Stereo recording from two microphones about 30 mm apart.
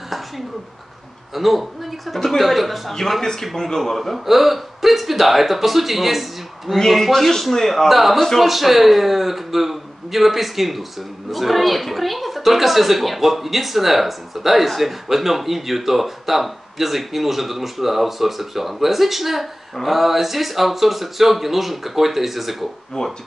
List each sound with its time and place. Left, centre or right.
1.3 s a man's voice: centre
2.1 s a man's voice: centre
2.4 s a man's voice: centre
2.9 s a man's voice: centre
4.3 s a man's voice: centre
6.9 s a man's voice: centre
7.9 s a man's voice: centre
23.0 s speech: left